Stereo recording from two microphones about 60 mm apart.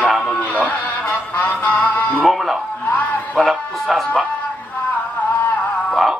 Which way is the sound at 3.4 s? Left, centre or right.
Centre.